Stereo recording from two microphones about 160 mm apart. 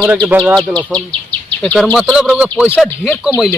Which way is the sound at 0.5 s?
5° left (ahead or behind).